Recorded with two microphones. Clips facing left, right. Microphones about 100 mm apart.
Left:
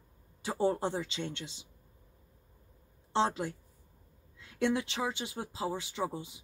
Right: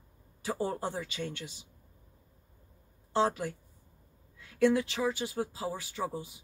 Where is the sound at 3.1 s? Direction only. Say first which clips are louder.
Right 1 dB; 25° left (ahead or behind).